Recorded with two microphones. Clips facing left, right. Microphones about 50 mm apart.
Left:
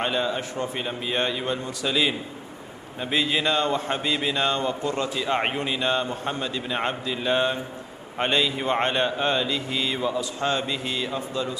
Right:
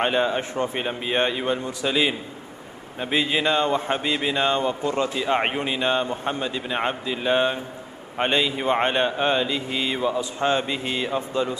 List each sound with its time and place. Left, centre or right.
0.0 s a man's voice: right